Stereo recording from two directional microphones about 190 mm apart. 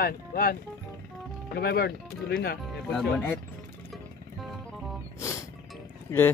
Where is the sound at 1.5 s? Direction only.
55° left (ahead or behind).